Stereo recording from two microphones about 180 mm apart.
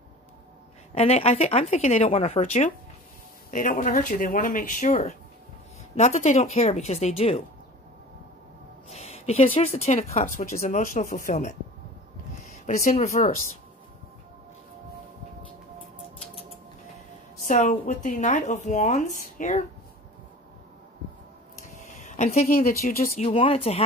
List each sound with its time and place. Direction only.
0.9 s speech: 35° left (ahead or behind)
3.4 s speech: 50° left (ahead or behind)
8.8 s speech: 35° left (ahead or behind)
17.5 s speech: 40° left (ahead or behind)
22.0 s a sound: 40° left (ahead or behind)
22.7 s speech: 55° left (ahead or behind)
23.1 s speech: 35° left (ahead or behind)